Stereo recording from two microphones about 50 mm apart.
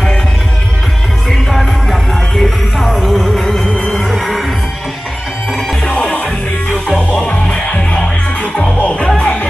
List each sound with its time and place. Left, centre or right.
1.5 s music: centre
3.6 s music: centre
3.9 s music: centre
5.9 s music: centre